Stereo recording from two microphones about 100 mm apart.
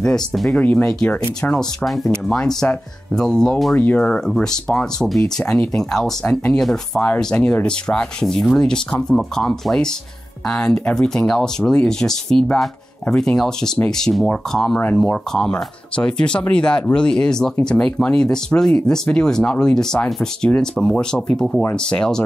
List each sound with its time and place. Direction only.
0.0 s speech: 5° left (ahead or behind)
3.7 s speech: 15° left (ahead or behind)
5.4 s speech: 15° left (ahead or behind)
5.8 s speech: 5° left (ahead or behind)